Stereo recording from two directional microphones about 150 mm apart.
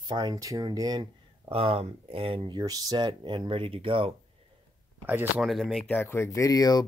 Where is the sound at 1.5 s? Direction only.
40° right (ahead or behind).